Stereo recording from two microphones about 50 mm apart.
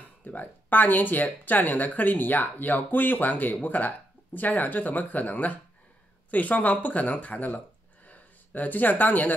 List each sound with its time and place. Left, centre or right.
0.2 s speech: left